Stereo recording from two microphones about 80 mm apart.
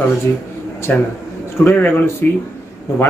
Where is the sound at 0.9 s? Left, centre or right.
Left.